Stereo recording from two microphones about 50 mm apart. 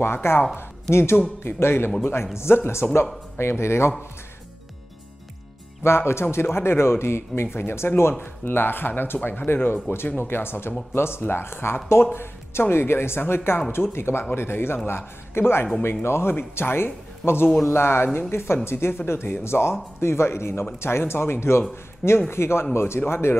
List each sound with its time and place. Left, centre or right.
0.0 s speech: left
5.9 s speech: left